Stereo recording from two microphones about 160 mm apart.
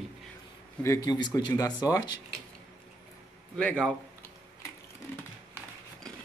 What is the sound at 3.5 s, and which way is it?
Speech, 5° left (ahead or behind).